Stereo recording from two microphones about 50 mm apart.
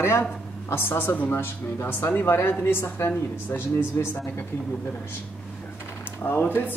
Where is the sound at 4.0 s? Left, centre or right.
Left.